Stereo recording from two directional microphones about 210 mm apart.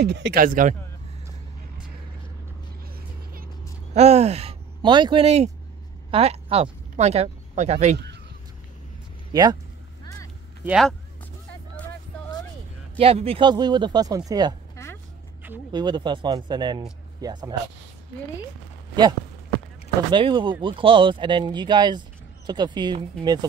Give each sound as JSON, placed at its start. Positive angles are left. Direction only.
{"t": 0.0, "sound": "speech", "side_deg": -50}
{"t": 3.9, "sound": "speech", "side_deg": -30}
{"t": 9.3, "sound": "speech", "side_deg": -20}
{"t": 10.0, "sound": "a sound", "side_deg": 15}
{"t": 10.6, "sound": "speech", "side_deg": 0}
{"t": 13.0, "sound": "speech", "side_deg": -25}
{"t": 14.8, "sound": "vehicle", "side_deg": 15}
{"t": 15.7, "sound": "speech", "side_deg": -20}
{"t": 20.1, "sound": "speech", "side_deg": -25}